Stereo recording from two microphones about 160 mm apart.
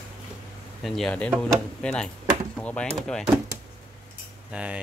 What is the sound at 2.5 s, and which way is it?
Chop, 10° left (ahead or behind).